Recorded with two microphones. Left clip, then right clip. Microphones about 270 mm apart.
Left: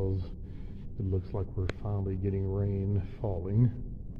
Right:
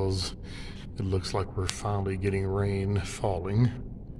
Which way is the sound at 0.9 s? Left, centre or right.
Centre.